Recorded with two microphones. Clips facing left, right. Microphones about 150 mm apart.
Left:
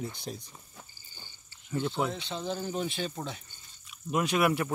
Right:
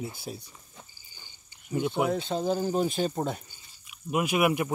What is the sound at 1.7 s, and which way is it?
Speech, 15° right (ahead or behind).